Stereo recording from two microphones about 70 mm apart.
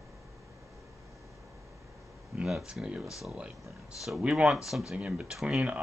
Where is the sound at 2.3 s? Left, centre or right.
Centre.